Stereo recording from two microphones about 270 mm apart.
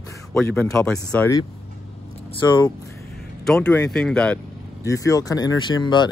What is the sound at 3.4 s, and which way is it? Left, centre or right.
Speech, centre.